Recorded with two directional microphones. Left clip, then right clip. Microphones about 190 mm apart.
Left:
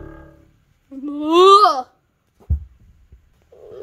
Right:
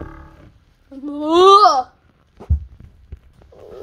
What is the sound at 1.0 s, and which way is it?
Speech, 25° left (ahead or behind).